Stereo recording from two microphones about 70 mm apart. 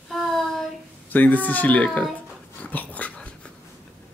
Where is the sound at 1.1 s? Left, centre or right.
Left.